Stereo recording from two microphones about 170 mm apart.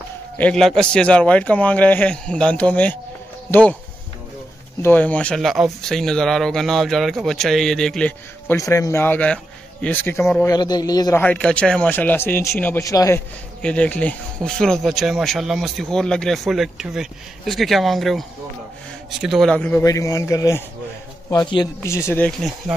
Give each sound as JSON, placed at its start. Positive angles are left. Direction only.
{"t": 0.4, "sound": "a man's voice", "side_deg": 5}
{"t": 4.8, "sound": "speech", "side_deg": 10}
{"t": 8.5, "sound": "a man's voice", "side_deg": 20}
{"t": 11.2, "sound": "a man's voice", "side_deg": 5}
{"t": 13.6, "sound": "a man's voice", "side_deg": 5}